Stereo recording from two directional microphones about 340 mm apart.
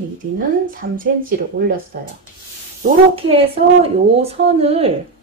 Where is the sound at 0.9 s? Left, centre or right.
Right.